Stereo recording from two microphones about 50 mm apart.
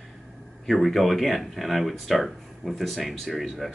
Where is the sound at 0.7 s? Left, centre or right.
Centre.